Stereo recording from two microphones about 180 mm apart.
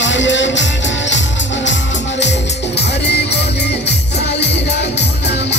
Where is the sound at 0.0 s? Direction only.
90° left.